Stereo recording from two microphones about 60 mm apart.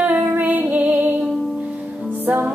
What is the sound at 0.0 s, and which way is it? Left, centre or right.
Music, right.